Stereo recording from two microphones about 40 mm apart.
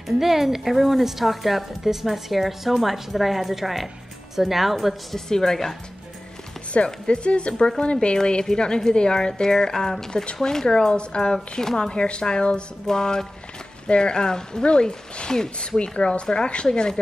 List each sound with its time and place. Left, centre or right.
0.2 s a woman's voice: centre
5.1 s a woman's voice: centre
6.7 s a woman's voice: left; by 11.9 s centre
11.9 s a woman's voice: left